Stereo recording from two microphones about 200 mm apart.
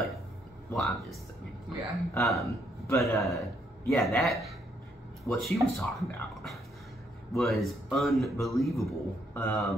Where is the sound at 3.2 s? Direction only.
Centre (ahead or behind).